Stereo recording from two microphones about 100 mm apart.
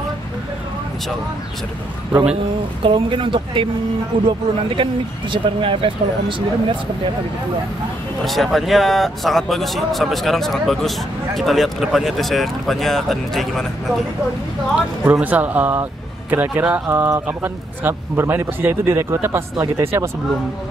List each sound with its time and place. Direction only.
2.8 s speech: 55° right (ahead or behind)
8.3 s speech: centre (ahead or behind)
14.8 s a man's voice: 15° right (ahead or behind)